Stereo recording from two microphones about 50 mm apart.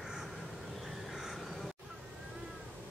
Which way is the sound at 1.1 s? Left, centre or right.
Centre.